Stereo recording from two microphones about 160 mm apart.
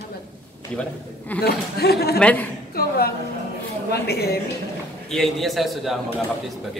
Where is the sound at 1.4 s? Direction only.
80° left.